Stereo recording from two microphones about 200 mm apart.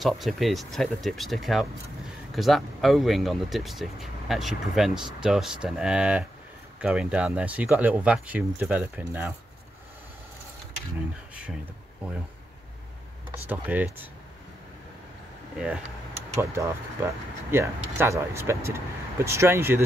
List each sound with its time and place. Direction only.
0.0 s speech: centre (ahead or behind)
13.5 s speech: 10° right (ahead or behind)
15.5 s speech: 5° right (ahead or behind)